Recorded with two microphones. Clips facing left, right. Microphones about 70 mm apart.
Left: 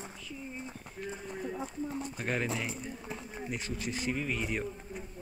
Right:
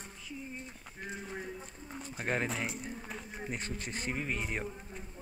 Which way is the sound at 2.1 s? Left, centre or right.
Right.